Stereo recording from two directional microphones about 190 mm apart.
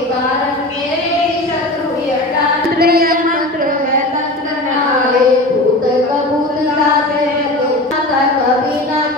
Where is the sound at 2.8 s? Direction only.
55° right (ahead or behind).